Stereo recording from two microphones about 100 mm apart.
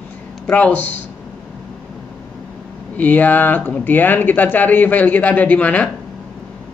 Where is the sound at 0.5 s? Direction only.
15° left (ahead or behind).